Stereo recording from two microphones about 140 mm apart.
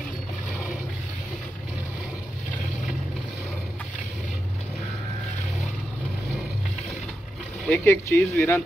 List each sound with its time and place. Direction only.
7.6 s speech: 15° left (ahead or behind)